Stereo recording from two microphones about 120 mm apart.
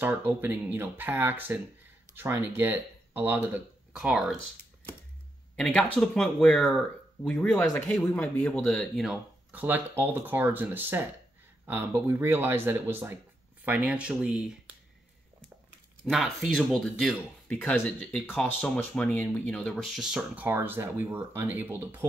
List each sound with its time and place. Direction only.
0.0 s speech: 15° right (ahead or behind)
5.6 s speech: 5° left (ahead or behind)
7.2 s speech: 15° left (ahead or behind)
8.7 s speech: centre (ahead or behind)
9.5 s speech: 15° right (ahead or behind)
16.1 s speech: centre (ahead or behind)
17.5 s speech: 15° left (ahead or behind); by 20.4 s 5° right (ahead or behind)
20.4 s speech: 15° right (ahead or behind)